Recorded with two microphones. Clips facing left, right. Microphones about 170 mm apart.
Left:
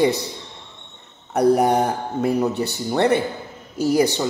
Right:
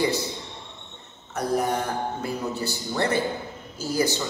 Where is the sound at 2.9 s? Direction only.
65° left (ahead or behind).